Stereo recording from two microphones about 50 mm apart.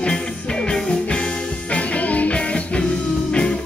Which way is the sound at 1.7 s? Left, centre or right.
Left.